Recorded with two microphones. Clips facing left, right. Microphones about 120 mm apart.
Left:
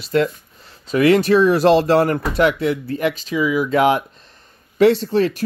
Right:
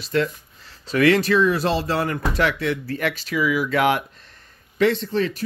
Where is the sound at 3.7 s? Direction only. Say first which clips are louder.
Left 4 dB; 30° left (ahead or behind).